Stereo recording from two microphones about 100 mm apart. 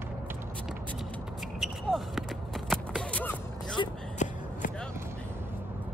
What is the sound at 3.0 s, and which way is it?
Music, 15° left (ahead or behind).